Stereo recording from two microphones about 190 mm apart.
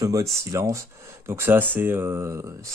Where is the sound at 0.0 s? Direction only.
20° right (ahead or behind).